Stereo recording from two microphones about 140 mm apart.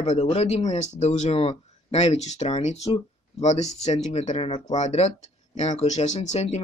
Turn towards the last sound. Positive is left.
turn(degrees=55)  # may be behind; listen again after turning